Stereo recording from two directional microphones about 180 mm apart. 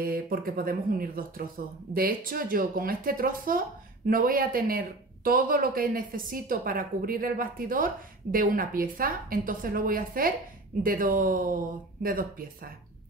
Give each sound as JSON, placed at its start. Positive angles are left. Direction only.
{"t": 0.0, "sound": "speech", "side_deg": -55}